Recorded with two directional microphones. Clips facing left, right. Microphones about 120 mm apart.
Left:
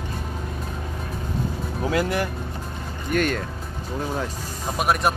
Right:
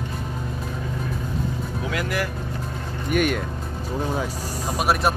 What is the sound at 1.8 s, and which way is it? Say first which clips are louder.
Speech: left 4 dB; 30° left (ahead or behind).